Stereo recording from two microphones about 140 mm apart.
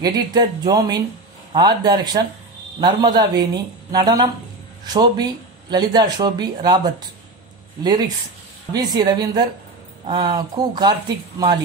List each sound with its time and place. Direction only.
0.0 s a woman's voice: 30° right (ahead or behind)
8.7 s a woman's voice: 30° right (ahead or behind)